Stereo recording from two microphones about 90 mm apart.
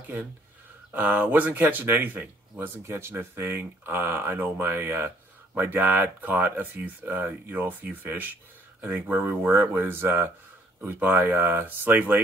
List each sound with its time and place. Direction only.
0.0 s speech: 20° right (ahead or behind)